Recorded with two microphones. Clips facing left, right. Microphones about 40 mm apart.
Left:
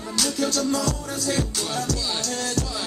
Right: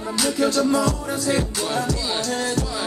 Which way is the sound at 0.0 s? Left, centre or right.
Right.